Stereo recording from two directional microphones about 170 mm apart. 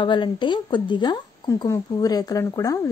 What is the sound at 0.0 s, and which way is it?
Speech, 30° left (ahead or behind).